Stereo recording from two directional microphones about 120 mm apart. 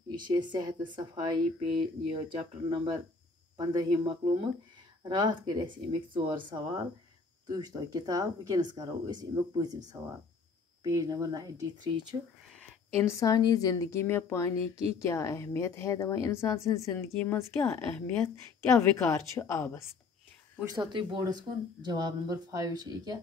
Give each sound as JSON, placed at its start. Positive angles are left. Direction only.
{"t": 0.3, "sound": "speech", "side_deg": -35}
{"t": 10.8, "sound": "speech", "side_deg": -30}
{"t": 12.9, "sound": "speech", "side_deg": 25}
{"t": 17.6, "sound": "a woman's voice", "side_deg": 15}
{"t": 20.7, "sound": "speech", "side_deg": -40}